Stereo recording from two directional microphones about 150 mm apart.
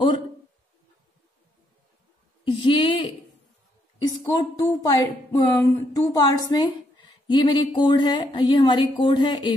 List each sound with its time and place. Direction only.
2.4 s a woman's voice: 35° left (ahead or behind)
4.2 s speech: 25° left (ahead or behind)
5.5 s a sound: 15° left (ahead or behind)
6.1 s a woman's voice: 25° left (ahead or behind)